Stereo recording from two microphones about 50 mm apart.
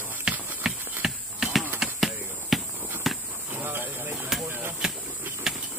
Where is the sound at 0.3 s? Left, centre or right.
Centre.